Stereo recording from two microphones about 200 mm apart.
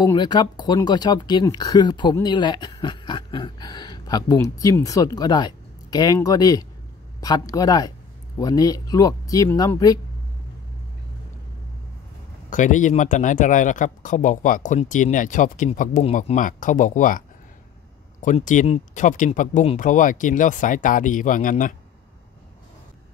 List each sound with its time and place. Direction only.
0.0 s speech: 20° left (ahead or behind)
12.4 s speech: 40° left (ahead or behind)
18.2 s speech: 40° left (ahead or behind)